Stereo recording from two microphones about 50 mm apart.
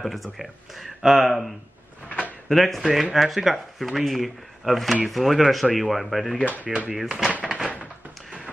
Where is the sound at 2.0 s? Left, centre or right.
Left.